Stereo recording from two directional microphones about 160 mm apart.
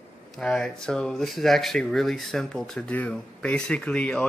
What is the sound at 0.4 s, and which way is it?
Speech, 5° left (ahead or behind).